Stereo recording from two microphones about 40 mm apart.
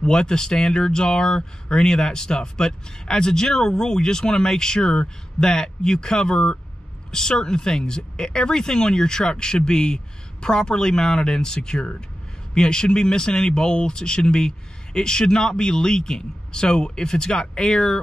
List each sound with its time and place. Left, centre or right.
0.0 s speech: centre